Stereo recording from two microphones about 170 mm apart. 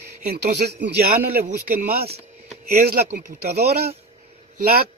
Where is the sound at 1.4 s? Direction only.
55° right (ahead or behind).